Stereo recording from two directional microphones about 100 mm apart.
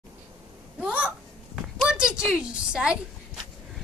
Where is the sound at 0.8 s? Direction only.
15° right (ahead or behind).